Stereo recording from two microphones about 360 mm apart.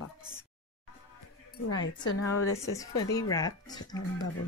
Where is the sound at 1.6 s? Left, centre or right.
Left.